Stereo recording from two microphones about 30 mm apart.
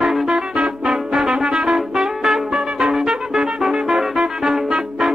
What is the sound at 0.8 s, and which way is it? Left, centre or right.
Brass instrument, right.